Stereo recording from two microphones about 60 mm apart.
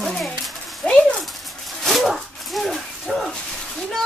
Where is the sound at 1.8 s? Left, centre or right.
Centre.